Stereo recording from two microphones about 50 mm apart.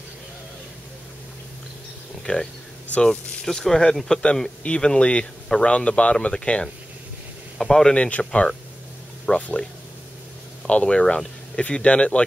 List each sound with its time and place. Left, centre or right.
2.3 s speech: left
3.0 s speech: centre
4.6 s speech: centre
7.5 s speech: centre
7.9 s speech: left
10.7 s speech: left